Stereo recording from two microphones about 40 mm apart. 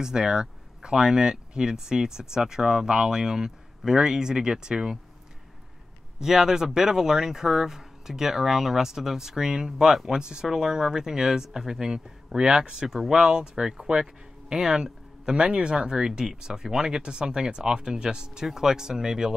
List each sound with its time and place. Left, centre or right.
0.0 s speech: centre
6.1 s speech: centre